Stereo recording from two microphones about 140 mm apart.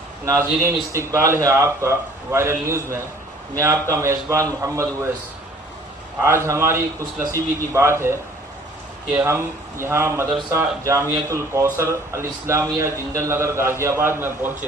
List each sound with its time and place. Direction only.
0.2 s a man's voice: 20° right (ahead or behind)
6.2 s a man's voice: 20° right (ahead or behind)